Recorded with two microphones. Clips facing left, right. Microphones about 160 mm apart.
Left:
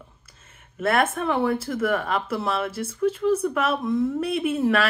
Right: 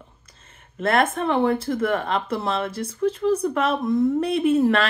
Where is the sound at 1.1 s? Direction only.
30° right (ahead or behind).